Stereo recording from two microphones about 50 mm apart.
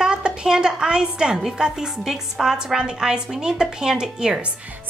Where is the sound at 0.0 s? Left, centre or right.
Centre.